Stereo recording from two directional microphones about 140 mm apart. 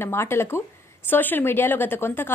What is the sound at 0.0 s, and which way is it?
A woman's voice, 15° left (ahead or behind).